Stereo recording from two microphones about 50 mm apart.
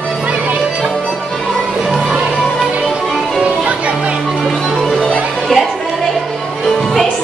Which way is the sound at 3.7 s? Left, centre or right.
Right.